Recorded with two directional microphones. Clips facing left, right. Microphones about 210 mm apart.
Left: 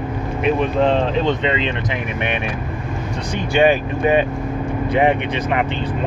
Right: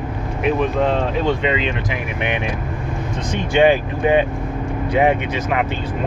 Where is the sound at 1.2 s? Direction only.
10° right (ahead or behind).